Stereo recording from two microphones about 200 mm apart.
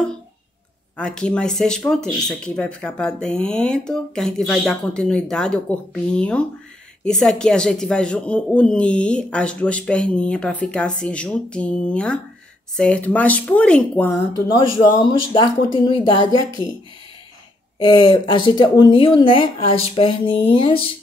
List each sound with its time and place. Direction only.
0.9 s speech: 5° left (ahead or behind)
14.3 s speech: 20° left (ahead or behind)
17.7 s speech: 25° left (ahead or behind)